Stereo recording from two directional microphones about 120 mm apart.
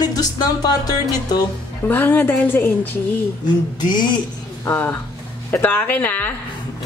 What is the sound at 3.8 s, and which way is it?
Speech, 40° left (ahead or behind).